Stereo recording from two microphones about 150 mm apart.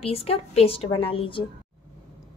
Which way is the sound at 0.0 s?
40° left (ahead or behind).